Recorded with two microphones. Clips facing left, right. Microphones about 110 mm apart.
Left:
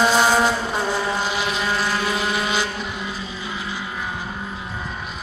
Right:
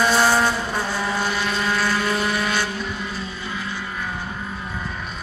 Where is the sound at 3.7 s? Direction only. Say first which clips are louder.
Left 1 dB; 15° left (ahead or behind).